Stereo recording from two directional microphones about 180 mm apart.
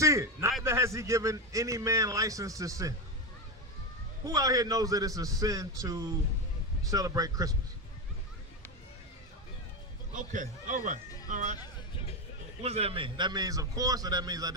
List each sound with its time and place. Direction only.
0.0 s a man's voice: 15° right (ahead or behind)
4.2 s a man's voice: 20° right (ahead or behind)
10.1 s a man's voice: 45° right (ahead or behind)
12.6 s a man's voice: 35° right (ahead or behind)